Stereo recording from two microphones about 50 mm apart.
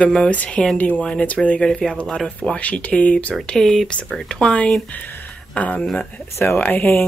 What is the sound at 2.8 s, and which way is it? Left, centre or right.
Speech, left.